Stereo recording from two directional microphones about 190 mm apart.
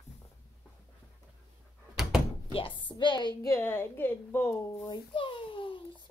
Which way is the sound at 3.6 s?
10° left (ahead or behind).